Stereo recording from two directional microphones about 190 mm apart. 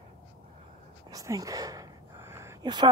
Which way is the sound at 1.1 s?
15° right (ahead or behind).